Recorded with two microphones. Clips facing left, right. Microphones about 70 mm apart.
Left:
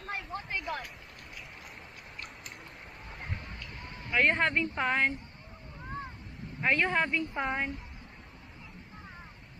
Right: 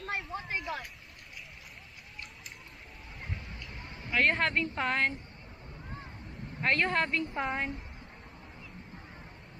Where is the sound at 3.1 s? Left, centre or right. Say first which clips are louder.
Left 1 dB; left.